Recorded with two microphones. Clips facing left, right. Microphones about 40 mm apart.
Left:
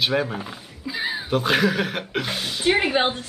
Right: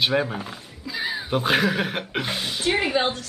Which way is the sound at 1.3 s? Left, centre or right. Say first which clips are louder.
Left 1 dB; centre.